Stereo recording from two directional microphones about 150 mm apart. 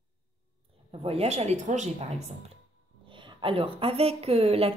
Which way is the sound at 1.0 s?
45° right (ahead or behind).